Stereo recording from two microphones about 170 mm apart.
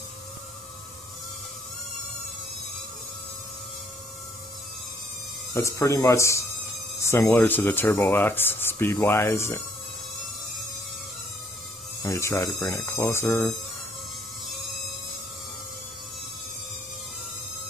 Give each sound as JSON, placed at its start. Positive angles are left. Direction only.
{"t": 5.5, "sound": "speech", "side_deg": 15}
{"t": 12.0, "sound": "speech", "side_deg": 15}